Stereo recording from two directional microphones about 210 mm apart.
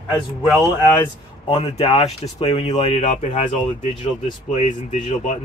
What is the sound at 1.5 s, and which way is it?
Speech, 25° left (ahead or behind).